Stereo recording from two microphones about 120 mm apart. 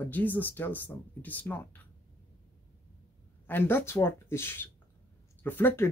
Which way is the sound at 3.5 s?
15° left (ahead or behind).